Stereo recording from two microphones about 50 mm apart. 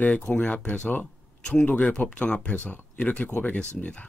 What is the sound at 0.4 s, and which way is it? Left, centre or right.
A man's voice, left.